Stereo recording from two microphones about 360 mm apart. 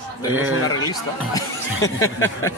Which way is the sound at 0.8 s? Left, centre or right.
Centre.